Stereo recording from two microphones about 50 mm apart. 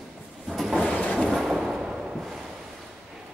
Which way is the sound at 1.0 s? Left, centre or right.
Left.